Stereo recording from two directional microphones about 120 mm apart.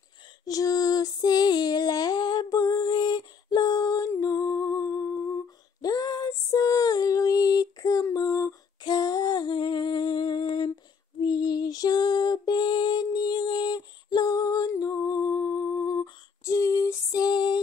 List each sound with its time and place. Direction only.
0.5 s female singing: 30° left (ahead or behind)
11.1 s lullaby: 35° left (ahead or behind)